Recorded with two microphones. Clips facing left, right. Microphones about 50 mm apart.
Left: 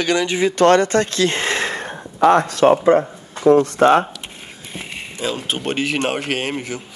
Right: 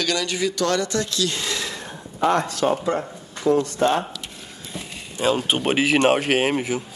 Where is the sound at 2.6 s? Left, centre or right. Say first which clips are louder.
Left 11 dB; left.